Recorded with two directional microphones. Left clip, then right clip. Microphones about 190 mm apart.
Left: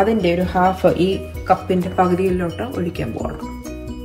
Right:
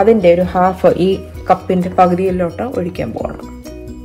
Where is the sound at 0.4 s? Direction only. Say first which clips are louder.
Right 4 dB; 35° right (ahead or behind).